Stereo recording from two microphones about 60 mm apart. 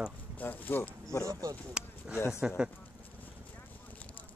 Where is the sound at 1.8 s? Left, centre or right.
Centre.